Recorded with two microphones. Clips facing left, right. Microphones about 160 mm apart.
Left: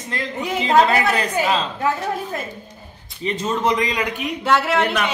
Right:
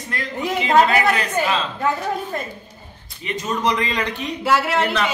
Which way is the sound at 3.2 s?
25° left (ahead or behind).